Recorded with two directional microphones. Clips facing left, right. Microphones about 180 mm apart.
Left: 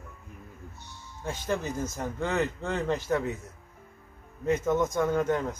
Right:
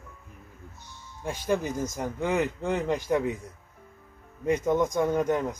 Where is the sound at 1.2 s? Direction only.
10° right (ahead or behind).